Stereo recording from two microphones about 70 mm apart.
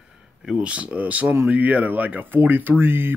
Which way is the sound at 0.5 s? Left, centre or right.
Centre.